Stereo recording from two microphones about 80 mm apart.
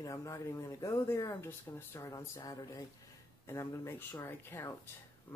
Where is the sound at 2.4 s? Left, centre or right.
Left.